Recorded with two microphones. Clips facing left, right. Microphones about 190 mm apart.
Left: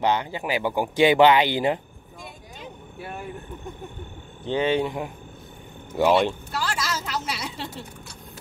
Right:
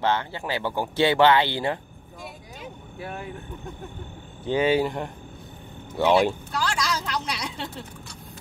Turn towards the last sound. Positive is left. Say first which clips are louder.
# even
turn(degrees=5)  # may be behind; listen again after turning